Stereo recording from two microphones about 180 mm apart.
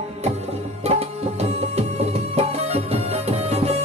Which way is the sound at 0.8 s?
35° right (ahead or behind).